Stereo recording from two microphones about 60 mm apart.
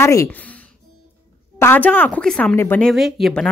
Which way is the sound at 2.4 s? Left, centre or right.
Left.